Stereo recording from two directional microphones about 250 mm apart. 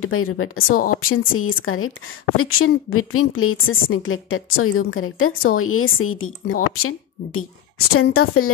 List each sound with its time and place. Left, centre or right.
0.0 s a woman's voice: left